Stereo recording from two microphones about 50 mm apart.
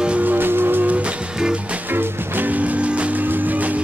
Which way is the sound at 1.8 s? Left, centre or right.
Right.